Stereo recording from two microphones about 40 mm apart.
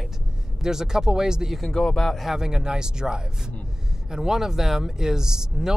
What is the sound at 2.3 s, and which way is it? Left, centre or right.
Speech, centre.